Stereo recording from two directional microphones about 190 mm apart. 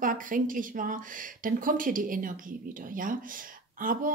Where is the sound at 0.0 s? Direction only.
45° right (ahead or behind).